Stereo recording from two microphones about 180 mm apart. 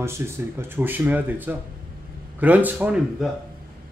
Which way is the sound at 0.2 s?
15° right (ahead or behind).